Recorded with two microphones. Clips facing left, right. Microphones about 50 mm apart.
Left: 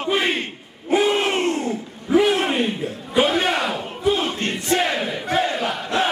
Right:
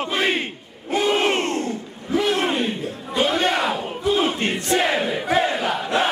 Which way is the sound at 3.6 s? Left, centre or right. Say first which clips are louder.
Even; centre.